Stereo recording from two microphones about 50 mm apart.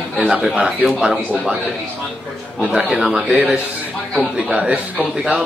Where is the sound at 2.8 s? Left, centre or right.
Centre.